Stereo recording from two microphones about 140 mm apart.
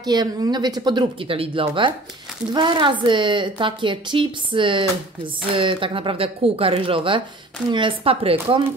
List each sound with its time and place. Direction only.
0.0 s a woman's voice: 30° right (ahead or behind)